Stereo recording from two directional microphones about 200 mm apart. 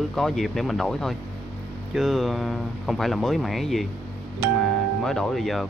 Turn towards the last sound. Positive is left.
turn(degrees=0)  # may be behind; listen again after turning